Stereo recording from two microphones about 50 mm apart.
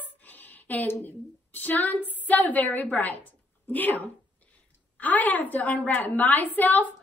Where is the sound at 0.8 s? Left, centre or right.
Left.